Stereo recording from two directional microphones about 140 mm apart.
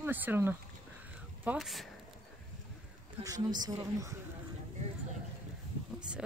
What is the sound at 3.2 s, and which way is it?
Speech, 30° right (ahead or behind).